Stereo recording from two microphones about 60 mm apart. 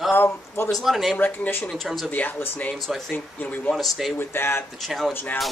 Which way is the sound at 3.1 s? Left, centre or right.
Left.